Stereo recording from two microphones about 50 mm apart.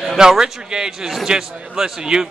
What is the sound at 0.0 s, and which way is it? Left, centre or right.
A man's voice, centre.